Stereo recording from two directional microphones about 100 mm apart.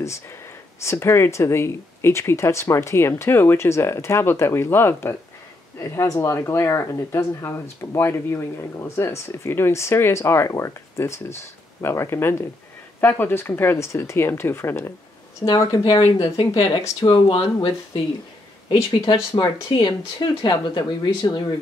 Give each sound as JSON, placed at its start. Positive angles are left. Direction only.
{"t": 0.8, "sound": "speech", "side_deg": 25}
{"t": 15.4, "sound": "speech", "side_deg": 40}
{"t": 17.1, "sound": "speech", "side_deg": 55}
{"t": 18.7, "sound": "speech", "side_deg": 50}